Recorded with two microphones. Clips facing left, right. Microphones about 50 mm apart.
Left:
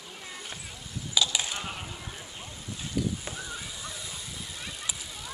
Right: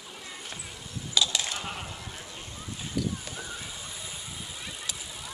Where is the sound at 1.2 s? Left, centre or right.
Centre.